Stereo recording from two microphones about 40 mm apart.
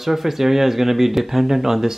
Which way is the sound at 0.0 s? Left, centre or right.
Centre.